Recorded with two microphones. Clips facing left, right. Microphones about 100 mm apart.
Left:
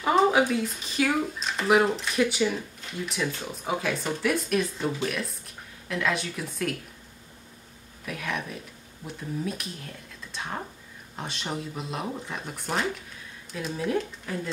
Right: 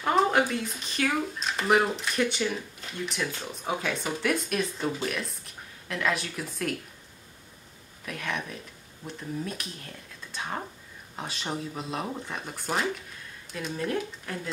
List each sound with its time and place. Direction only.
0.0 s speech: centre (ahead or behind)
8.0 s speech: centre (ahead or behind)